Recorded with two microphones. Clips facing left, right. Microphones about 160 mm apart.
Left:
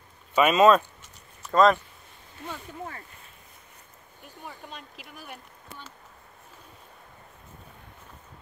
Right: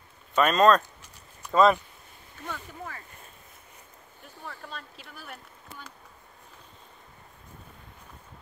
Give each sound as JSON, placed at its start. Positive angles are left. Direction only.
{"t": 0.4, "sound": "speech", "side_deg": 10}
{"t": 1.4, "sound": "speech", "side_deg": -5}
{"t": 2.4, "sound": "speech", "side_deg": 15}
{"t": 4.5, "sound": "speech", "side_deg": 15}
{"t": 5.2, "sound": "speech", "side_deg": 0}